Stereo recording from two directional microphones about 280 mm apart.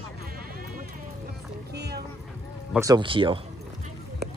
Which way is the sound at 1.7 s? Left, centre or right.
Right.